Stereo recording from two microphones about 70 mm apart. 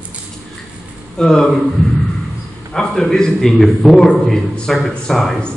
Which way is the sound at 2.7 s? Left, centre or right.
Centre.